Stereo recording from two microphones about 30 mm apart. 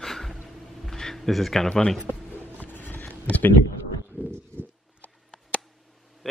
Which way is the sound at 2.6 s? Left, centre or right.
Left.